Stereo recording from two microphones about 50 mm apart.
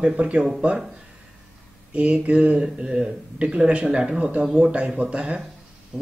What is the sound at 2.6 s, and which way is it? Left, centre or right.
Speech, centre.